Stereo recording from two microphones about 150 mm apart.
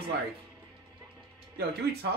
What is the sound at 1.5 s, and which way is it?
Speech, 90° right.